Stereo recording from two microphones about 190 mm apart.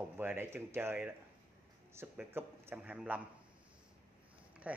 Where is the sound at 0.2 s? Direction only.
10° right (ahead or behind).